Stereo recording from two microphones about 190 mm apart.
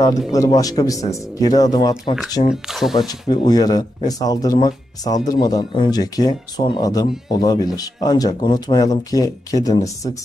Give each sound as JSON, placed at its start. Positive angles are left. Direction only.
{"t": 0.3, "sound": "speech", "side_deg": 20}
{"t": 2.5, "sound": "speech", "side_deg": 0}
{"t": 3.1, "sound": "speech", "side_deg": 20}